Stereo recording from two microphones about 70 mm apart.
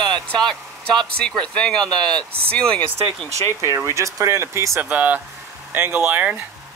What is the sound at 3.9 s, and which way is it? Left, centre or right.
Speech, right.